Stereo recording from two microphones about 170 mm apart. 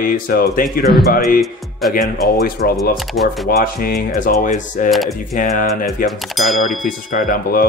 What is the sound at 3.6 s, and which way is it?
Speech, 60° left (ahead or behind).